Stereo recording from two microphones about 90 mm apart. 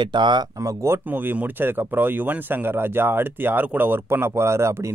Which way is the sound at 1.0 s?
20° right (ahead or behind).